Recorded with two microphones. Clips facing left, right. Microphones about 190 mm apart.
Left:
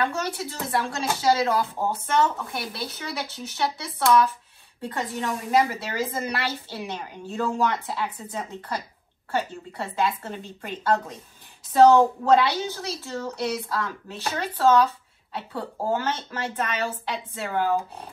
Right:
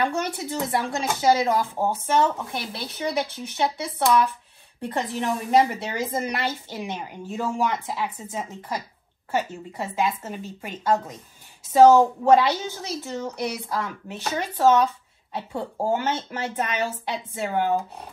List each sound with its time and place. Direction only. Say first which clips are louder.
0.0 s a woman's voice: right 2 dB; 15° right (ahead or behind)